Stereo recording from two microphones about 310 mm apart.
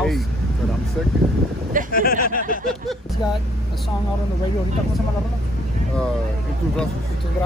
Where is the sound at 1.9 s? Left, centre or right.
Left.